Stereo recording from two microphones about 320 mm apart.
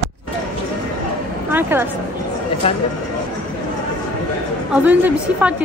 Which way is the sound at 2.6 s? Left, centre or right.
Centre.